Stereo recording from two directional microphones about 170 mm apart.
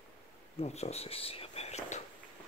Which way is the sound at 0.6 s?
40° left (ahead or behind).